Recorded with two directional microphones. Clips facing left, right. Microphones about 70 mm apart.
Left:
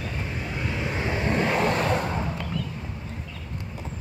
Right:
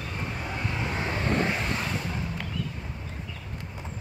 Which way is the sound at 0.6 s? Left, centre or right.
Centre.